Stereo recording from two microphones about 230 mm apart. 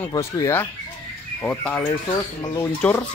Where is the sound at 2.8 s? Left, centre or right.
Centre.